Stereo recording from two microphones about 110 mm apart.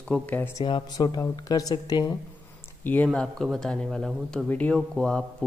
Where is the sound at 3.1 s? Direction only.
5° left (ahead or behind).